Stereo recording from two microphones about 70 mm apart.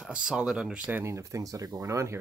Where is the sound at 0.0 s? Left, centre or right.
Centre.